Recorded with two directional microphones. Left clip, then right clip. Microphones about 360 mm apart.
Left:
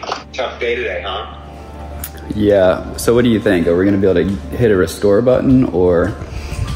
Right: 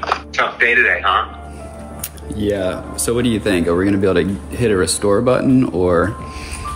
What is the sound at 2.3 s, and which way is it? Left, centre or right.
Speech, centre.